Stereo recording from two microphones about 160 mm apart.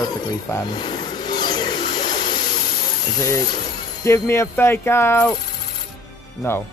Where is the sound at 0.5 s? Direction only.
25° left (ahead or behind).